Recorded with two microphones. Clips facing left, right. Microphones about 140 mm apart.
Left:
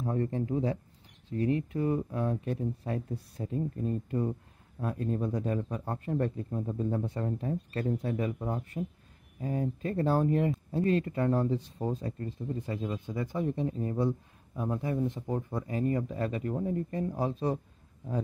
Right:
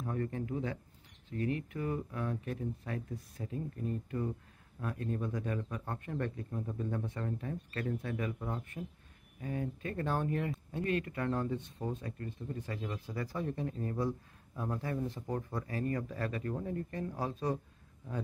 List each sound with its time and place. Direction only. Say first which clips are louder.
0.0 s speech: left 6 dB; 30° left (ahead or behind)